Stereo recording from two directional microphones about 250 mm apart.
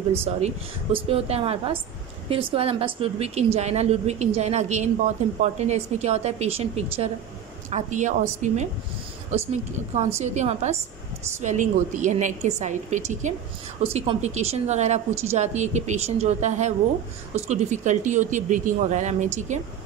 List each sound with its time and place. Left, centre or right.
0.3 s a woman's voice: right